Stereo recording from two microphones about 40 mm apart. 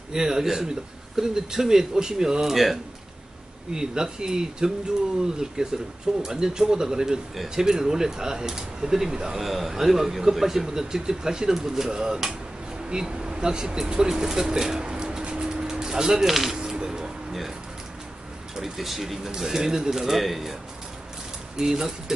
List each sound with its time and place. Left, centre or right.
0.1 s a man's voice: centre
3.7 s a man's voice: centre
9.4 s a man's voice: centre
16.5 s a sound: centre
18.6 s a man's voice: centre
21.5 s a man's voice: centre